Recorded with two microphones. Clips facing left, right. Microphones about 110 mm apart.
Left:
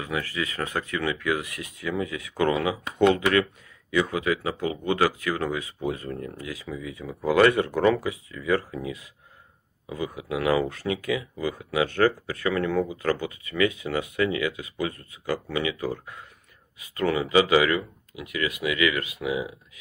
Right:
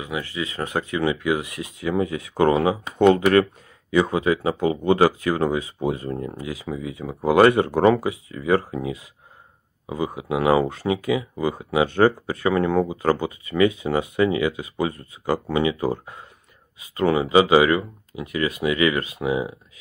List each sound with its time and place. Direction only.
0.0 s speech: 20° right (ahead or behind)